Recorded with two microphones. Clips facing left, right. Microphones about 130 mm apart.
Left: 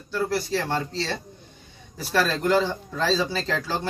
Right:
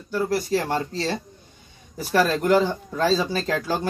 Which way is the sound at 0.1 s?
15° right (ahead or behind).